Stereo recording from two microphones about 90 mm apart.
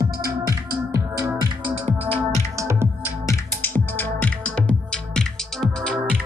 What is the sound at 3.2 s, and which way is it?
Music, 35° left (ahead or behind).